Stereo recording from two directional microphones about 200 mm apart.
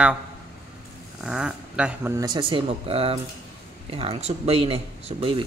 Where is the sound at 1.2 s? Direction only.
Centre (ahead or behind); by 5.5 s 25° right (ahead or behind).